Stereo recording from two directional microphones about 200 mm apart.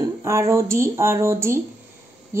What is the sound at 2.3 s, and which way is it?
Insect, 10° right (ahead or behind).